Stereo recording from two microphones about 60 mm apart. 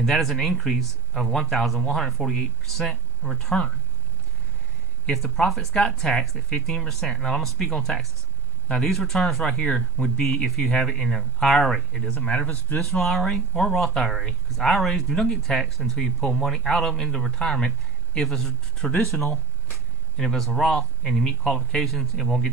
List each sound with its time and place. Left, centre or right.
0.0 s speech: centre
5.1 s speech: centre
9.6 s speech: centre
10.2 s speech: centre
20.2 s speech: centre